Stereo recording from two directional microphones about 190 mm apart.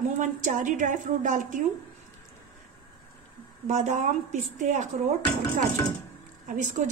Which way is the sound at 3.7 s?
40° right (ahead or behind).